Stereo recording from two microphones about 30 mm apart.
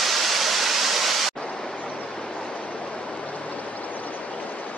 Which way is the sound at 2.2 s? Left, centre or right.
Left.